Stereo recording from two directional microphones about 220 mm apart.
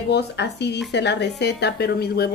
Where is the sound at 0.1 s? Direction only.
50° left (ahead or behind).